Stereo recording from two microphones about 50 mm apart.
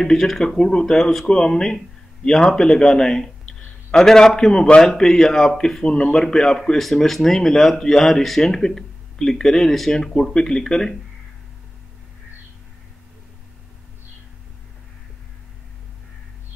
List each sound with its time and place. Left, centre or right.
0.0 s a man's voice: centre
5.9 s speech: left
6.1 s speech: centre